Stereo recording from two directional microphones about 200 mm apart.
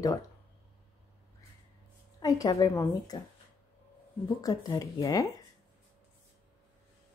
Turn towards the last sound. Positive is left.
turn(degrees=20)  # may be behind; listen again after turning